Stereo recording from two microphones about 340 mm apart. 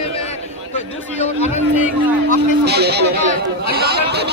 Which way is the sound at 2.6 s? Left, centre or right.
Right.